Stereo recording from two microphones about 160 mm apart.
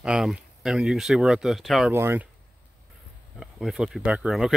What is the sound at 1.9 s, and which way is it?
Speech, 15° right (ahead or behind).